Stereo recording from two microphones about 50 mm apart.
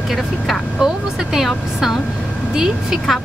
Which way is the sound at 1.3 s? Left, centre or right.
Centre.